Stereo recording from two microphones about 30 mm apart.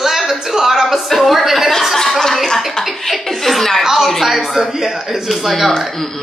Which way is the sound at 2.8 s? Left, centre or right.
Left.